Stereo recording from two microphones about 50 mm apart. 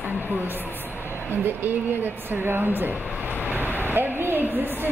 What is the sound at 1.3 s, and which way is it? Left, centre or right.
Speech, right.